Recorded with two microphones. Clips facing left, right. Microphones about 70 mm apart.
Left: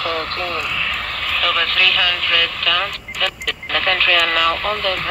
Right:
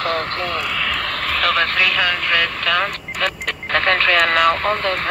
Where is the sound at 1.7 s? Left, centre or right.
Right.